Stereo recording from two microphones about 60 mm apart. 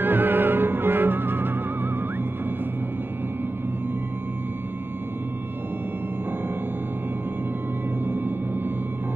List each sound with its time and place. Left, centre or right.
0.0 s music: right
8.0 s music: right